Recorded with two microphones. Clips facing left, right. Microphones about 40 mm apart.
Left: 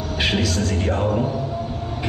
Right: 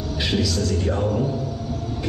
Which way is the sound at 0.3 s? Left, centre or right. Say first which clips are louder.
Right 1 dB; left.